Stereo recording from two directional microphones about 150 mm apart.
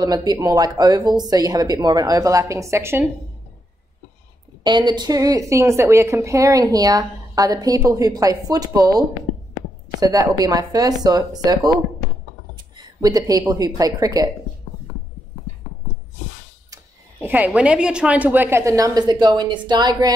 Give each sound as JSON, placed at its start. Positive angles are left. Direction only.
{"t": 0.0, "sound": "a woman's voice", "side_deg": -25}
{"t": 4.6, "sound": "a woman's voice", "side_deg": -30}
{"t": 16.7, "sound": "a sound", "side_deg": -15}
{"t": 17.5, "sound": "a woman's voice", "side_deg": -5}